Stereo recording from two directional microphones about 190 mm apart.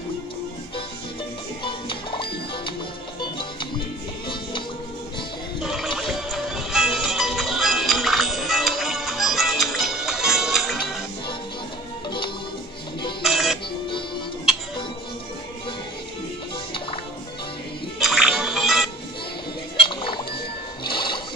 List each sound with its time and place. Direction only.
1.6 s music: 25° left (ahead or behind)
5.6 s music: centre (ahead or behind)
13.2 s music: centre (ahead or behind)
17.9 s music: centre (ahead or behind)
19.9 s music: 25° left (ahead or behind)